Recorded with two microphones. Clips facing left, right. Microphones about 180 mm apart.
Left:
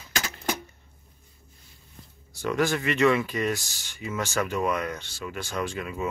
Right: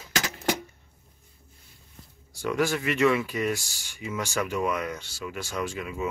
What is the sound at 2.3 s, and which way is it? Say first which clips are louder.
Speech: left 1 dB; 10° right (ahead or behind).